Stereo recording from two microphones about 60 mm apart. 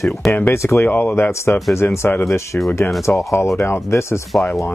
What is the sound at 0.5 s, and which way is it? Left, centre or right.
Speech, left.